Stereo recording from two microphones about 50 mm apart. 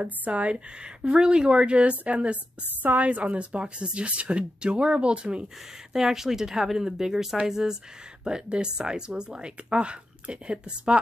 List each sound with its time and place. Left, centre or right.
0.0 s speech: right
2.8 s a woman's voice: right
3.1 s speech: right
5.9 s speech: centre